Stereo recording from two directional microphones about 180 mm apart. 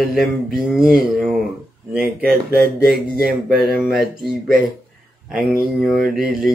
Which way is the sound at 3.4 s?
Centre (ahead or behind).